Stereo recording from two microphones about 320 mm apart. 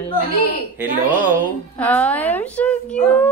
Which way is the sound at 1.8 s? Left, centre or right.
Centre.